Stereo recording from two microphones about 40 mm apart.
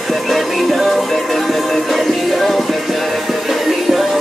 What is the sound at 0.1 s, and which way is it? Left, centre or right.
Music, centre.